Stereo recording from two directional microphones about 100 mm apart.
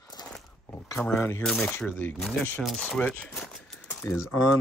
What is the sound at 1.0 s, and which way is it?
Speech, 20° left (ahead or behind).